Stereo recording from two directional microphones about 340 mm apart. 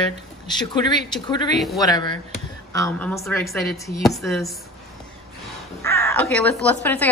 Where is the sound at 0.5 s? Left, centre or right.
Centre.